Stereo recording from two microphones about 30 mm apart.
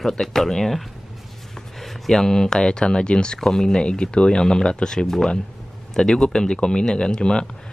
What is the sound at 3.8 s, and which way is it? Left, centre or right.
Speech, left.